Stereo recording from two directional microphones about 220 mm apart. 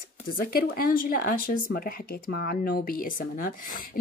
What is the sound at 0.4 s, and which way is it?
Speech, 40° left (ahead or behind).